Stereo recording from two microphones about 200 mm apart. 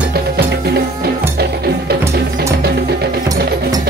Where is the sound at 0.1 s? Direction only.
55° right (ahead or behind).